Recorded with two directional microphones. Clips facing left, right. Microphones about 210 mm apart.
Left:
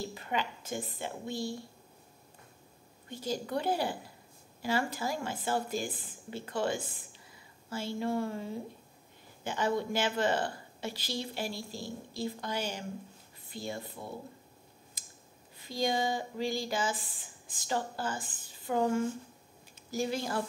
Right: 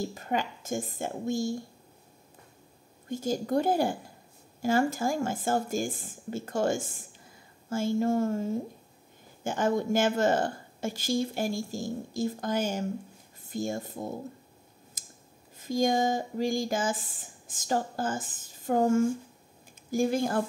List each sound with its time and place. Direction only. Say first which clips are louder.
0.1 s a woman's voice: right 4 dB; 45° right (ahead or behind)
3.1 s a woman's voice: right 6 dB; 45° right (ahead or behind)
15.0 s scissors: right 4 dB; 45° right (ahead or behind)
15.5 s a woman's voice: right 6 dB; 45° right (ahead or behind)